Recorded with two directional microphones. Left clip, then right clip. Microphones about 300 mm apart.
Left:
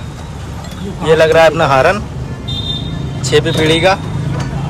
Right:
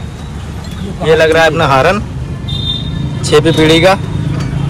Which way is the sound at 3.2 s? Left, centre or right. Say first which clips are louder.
Right 4 dB; centre.